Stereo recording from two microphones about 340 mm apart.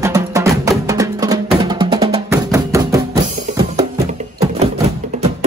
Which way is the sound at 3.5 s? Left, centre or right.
Centre.